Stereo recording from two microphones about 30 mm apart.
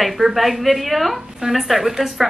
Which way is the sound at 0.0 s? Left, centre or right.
Centre.